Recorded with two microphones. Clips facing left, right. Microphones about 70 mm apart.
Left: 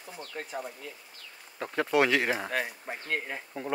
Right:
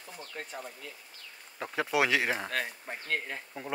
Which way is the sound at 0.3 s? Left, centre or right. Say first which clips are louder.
Left 4 dB; centre.